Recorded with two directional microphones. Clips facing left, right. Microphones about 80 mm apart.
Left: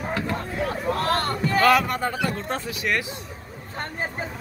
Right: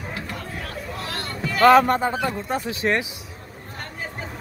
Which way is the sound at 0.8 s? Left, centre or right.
Left.